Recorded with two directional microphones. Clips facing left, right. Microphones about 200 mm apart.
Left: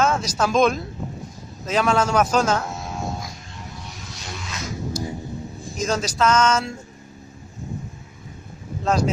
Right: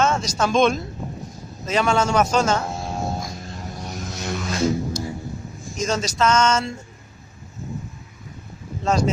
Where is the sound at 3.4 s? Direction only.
40° right (ahead or behind).